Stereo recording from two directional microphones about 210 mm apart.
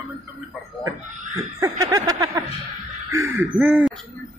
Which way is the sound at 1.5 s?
15° right (ahead or behind).